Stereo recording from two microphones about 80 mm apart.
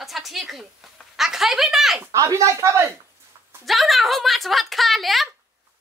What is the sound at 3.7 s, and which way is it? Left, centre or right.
Speech, centre.